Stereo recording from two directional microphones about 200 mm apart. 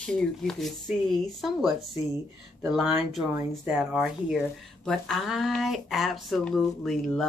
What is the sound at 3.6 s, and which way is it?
Speech, centre (ahead or behind).